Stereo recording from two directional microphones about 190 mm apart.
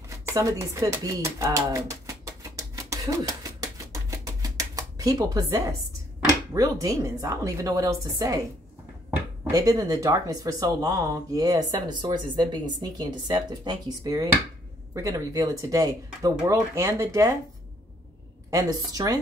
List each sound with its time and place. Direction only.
0.2 s a sound: 15° right (ahead or behind)
6.5 s a woman's voice: 15° right (ahead or behind)
9.5 s a woman's voice: 20° right (ahead or behind)
18.5 s speech: 20° right (ahead or behind)